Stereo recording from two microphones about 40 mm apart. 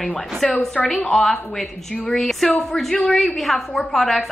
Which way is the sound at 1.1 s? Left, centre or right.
Centre.